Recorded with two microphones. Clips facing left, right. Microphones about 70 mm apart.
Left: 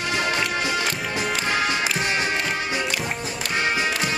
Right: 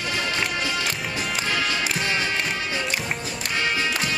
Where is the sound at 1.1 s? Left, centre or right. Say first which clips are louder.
Left 3 dB; left.